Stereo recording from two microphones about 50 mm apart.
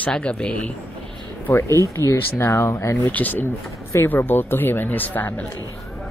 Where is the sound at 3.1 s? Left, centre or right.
Left.